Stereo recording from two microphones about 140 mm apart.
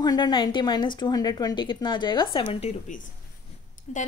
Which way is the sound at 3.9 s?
60° left (ahead or behind).